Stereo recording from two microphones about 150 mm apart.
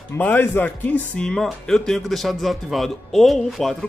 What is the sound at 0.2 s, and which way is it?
A man's voice, 15° left (ahead or behind).